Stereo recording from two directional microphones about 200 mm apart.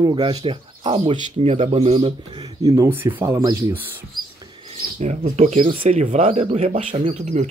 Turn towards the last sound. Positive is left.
turn(degrees=-35)  # may be behind; listen again after turning